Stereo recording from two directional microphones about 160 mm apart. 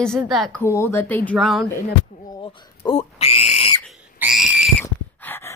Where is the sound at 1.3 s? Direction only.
Centre (ahead or behind).